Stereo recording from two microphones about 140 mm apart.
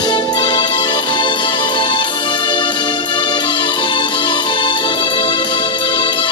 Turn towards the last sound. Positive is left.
turn(degrees=35)  # may be behind; listen again after turning